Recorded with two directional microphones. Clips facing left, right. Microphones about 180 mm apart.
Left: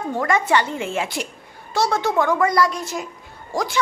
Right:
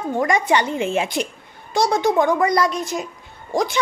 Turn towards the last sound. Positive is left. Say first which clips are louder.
# right 4 dB
turn(degrees=-20)  # may be behind; listen again after turning